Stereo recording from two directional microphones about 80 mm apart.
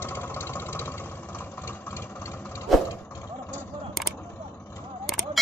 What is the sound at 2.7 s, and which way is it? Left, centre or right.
Vehicle, centre.